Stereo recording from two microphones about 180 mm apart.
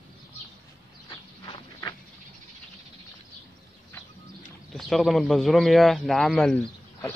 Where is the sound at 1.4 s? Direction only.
25° left (ahead or behind).